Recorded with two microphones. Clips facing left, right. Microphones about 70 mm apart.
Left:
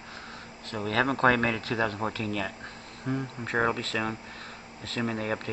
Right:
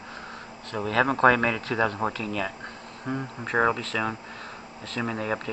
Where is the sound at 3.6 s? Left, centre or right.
Centre.